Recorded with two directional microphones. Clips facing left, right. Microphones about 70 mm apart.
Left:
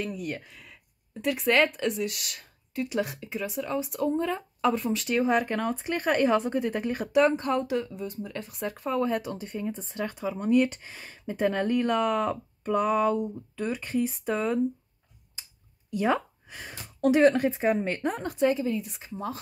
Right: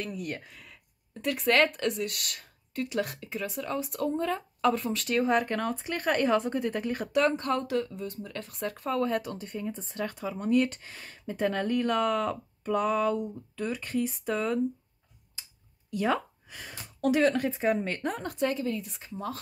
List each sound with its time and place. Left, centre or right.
0.0 s speech: centre
15.9 s speech: left